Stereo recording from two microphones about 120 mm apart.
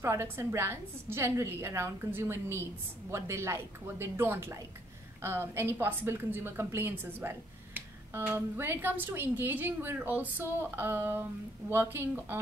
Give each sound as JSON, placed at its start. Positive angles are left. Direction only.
{"t": 0.0, "sound": "a woman's voice", "side_deg": -20}